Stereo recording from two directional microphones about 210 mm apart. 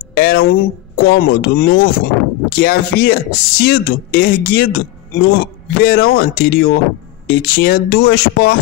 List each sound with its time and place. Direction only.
0.1 s speech: 45° left (ahead or behind)